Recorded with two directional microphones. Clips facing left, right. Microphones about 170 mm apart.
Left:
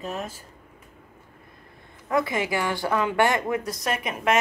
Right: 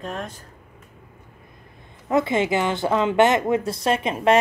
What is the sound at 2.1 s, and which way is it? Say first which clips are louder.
Speech: right 4 dB; 25° right (ahead or behind).